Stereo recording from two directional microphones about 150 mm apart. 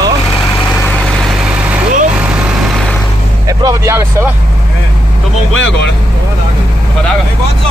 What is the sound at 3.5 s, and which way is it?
Vehicle, 20° right (ahead or behind).